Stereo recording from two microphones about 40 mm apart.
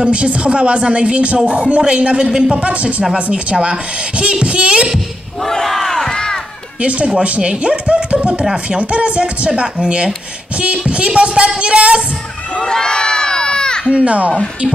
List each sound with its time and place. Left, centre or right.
0.0 s speech: right
5.4 s battle cry: centre
6.8 s speech: right
10.9 s speech: right
12.5 s crowd: centre
13.8 s speech: right